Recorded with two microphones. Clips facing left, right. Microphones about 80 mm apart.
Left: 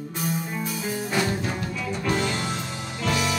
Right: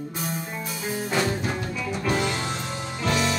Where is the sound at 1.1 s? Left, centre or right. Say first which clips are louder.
Right 1 dB; centre.